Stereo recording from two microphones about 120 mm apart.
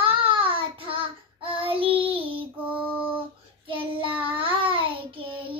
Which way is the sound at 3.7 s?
45° right (ahead or behind).